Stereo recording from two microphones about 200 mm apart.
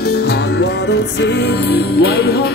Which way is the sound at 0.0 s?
55° left (ahead or behind).